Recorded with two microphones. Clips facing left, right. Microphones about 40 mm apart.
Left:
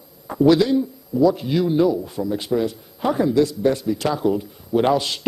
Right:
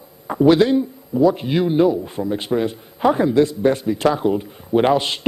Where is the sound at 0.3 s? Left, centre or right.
Right.